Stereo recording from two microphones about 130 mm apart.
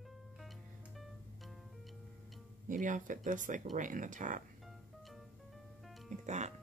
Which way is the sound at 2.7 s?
75° right (ahead or behind).